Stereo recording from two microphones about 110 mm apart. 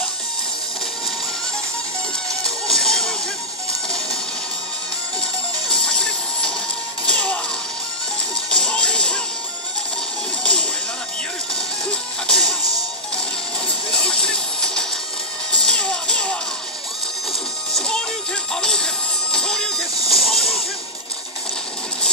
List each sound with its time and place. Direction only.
2.4 s music: 5° left (ahead or behind)
5.2 s music: 5° left (ahead or behind)
7.1 s whip: 10° left (ahead or behind)
8.5 s music: 10° left (ahead or behind)
10.4 s music: 10° left (ahead or behind)
11.9 s music: 5° left (ahead or behind)
13.9 s vehicle: 10° left (ahead or behind)
15.5 s music: 5° left (ahead or behind)
17.7 s music: 10° left (ahead or behind)
20.0 s a sound: 60° left (ahead or behind)
20.2 s a sound: centre (ahead or behind)